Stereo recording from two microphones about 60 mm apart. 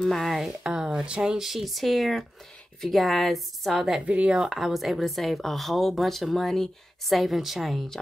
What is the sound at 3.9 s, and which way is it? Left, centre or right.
Speech, right.